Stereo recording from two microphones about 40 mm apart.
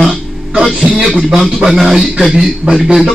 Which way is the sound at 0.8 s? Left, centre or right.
Right.